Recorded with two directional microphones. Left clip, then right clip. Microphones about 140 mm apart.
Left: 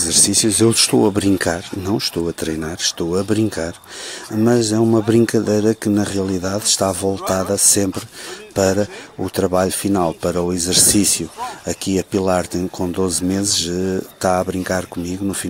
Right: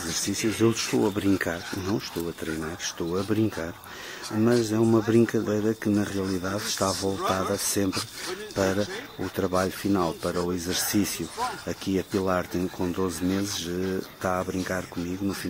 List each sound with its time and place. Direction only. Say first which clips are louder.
0.1 s speech: left 11 dB; 35° left (ahead or behind)